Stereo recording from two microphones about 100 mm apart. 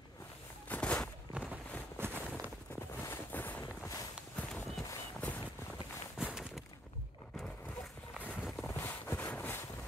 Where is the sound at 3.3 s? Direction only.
15° left (ahead or behind).